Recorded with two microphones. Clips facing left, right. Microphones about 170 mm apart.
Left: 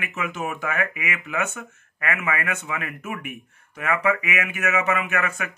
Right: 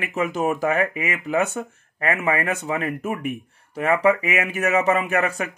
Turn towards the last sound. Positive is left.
turn(degrees=-35)  # may be behind; listen again after turning